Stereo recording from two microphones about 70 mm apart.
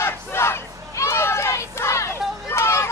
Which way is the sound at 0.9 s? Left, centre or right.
Left.